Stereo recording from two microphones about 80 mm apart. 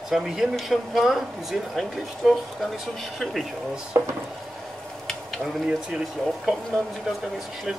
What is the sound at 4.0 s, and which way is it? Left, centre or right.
Speech, right.